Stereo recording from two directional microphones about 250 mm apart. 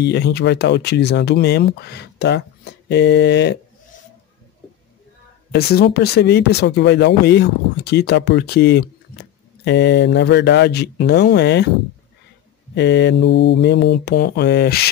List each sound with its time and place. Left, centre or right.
0.0 s speech: left
5.5 s speech: left
12.7 s mantra: left